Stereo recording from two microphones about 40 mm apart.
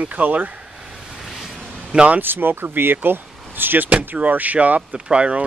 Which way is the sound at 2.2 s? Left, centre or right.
Right.